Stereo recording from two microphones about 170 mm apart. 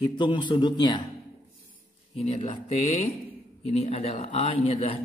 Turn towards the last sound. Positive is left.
turn(degrees=35)  # may be behind; listen again after turning